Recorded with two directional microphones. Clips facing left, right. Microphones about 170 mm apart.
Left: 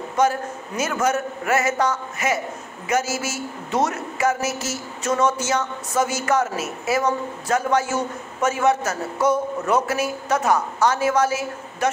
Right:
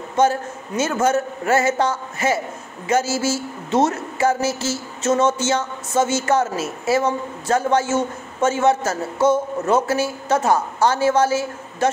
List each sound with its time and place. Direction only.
0.1 s a woman's voice: 25° right (ahead or behind)